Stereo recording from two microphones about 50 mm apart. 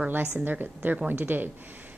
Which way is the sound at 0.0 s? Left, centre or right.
Right.